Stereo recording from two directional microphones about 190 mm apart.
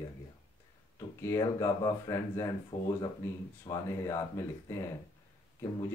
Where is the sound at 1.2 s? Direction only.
15° left (ahead or behind).